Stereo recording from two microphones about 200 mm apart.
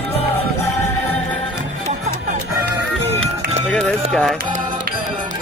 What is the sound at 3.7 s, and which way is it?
Run, 5° left (ahead or behind).